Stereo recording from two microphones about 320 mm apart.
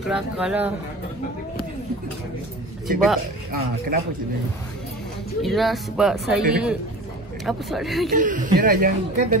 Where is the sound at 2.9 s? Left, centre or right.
Centre.